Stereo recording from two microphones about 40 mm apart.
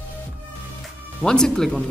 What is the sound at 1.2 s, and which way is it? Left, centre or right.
Speech, centre.